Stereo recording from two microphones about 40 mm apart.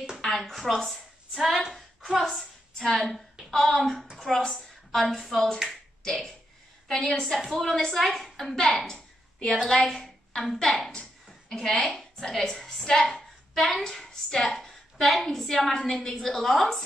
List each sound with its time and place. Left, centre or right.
0.2 s speech: centre
2.1 s a woman's voice: centre
3.5 s a woman's voice: centre
4.4 s a woman's voice: centre
4.9 s a woman's voice: centre
5.7 s finger snapping: centre
6.9 s a woman's voice: centre
8.6 s a sound: centre
9.7 s a woman's voice: centre